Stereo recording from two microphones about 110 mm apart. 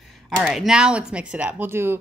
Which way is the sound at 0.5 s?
5° right (ahead or behind).